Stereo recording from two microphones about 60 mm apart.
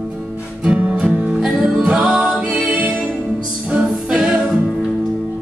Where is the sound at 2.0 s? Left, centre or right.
Centre.